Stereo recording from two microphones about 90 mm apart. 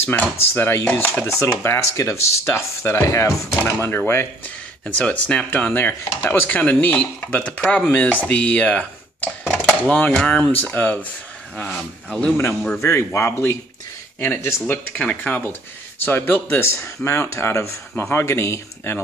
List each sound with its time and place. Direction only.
0.0 s speech: 15° left (ahead or behind)
0.4 s speech: 25° left (ahead or behind); by 12.3 s 10° left (ahead or behind)
12.7 s speech: 30° left (ahead or behind)
14.9 s speech: 15° left (ahead or behind); by 18.9 s 30° left (ahead or behind)